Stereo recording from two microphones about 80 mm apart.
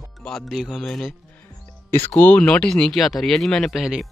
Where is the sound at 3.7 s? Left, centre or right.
Centre.